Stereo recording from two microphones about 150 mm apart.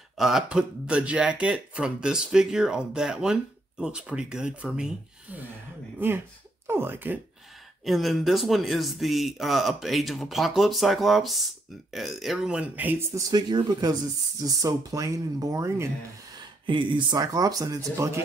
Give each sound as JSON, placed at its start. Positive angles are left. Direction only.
{"t": 0.2, "sound": "speech", "side_deg": -5}
{"t": 6.7, "sound": "speech", "side_deg": -15}
{"t": 7.8, "sound": "speech", "side_deg": 0}
{"t": 13.3, "sound": "speech", "side_deg": -25}
{"t": 16.6, "sound": "speech", "side_deg": -30}